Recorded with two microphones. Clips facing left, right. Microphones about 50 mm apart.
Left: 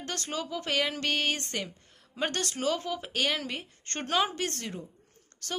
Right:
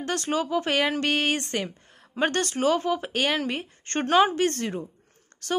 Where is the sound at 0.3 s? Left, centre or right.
Right.